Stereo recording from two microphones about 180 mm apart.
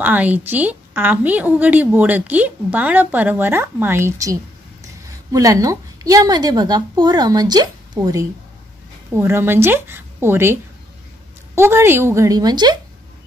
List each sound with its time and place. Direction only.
0.0 s a woman's voice: 10° right (ahead or behind)